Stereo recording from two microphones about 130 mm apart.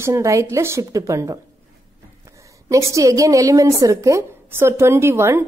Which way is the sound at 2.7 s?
25° right (ahead or behind).